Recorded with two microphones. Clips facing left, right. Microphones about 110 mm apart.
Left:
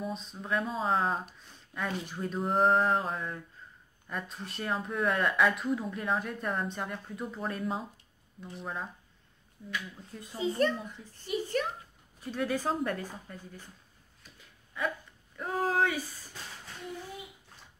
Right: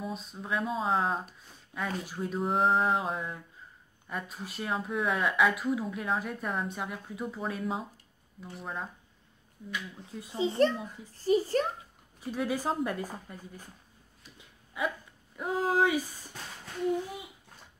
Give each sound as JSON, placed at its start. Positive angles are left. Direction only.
{"t": 0.0, "sound": "speech", "side_deg": -5}
{"t": 10.3, "sound": "a child's voice", "side_deg": -25}
{"t": 12.2, "sound": "a woman's voice", "side_deg": -10}
{"t": 15.3, "sound": "a woman's voice", "side_deg": -10}